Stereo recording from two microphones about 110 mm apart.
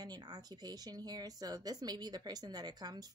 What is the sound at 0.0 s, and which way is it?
Speech, 35° right (ahead or behind).